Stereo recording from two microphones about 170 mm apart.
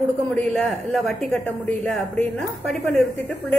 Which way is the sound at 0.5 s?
5° left (ahead or behind).